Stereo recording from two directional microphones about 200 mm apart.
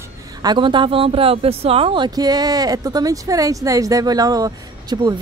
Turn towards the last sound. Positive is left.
turn(degrees=-20)  # may be behind; listen again after turning